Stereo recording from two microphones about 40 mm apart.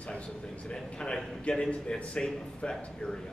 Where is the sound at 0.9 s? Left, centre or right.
Left.